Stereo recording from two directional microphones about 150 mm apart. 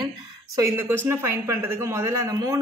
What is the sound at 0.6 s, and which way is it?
Speech, 20° right (ahead or behind).